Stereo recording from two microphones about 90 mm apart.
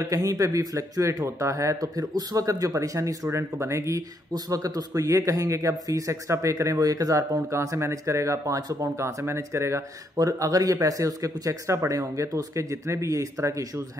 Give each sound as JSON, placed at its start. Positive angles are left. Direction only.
{"t": 0.0, "sound": "speech", "side_deg": -35}
{"t": 4.3, "sound": "speech", "side_deg": -40}